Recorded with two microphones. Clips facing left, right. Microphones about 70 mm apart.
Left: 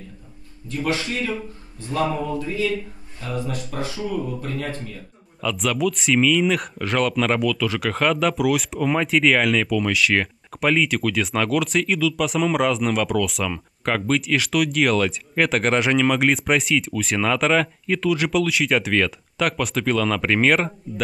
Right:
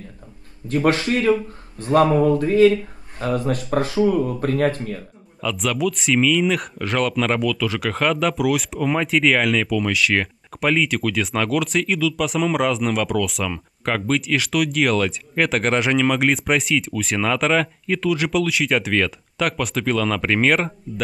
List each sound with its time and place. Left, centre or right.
0.7 s speech: right
5.4 s speech: centre